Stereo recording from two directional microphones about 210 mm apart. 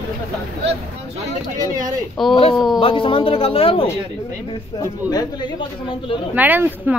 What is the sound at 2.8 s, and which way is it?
A woman's voice, 25° left (ahead or behind).